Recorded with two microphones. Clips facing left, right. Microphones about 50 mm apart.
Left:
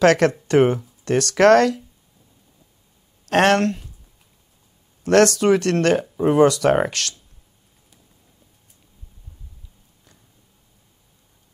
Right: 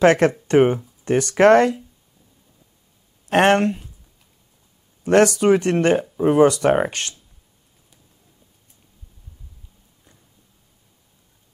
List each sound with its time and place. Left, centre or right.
0.0 s speech: centre
3.3 s speech: right
5.0 s speech: centre
6.0 s speech: centre
6.9 s speech: right